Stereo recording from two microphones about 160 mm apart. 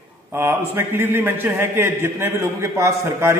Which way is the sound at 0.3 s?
15° right (ahead or behind).